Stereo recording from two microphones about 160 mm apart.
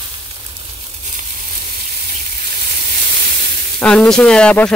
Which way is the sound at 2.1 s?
70° right (ahead or behind).